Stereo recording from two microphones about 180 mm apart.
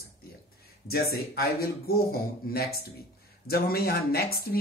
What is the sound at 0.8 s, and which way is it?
Speech, 60° left (ahead or behind).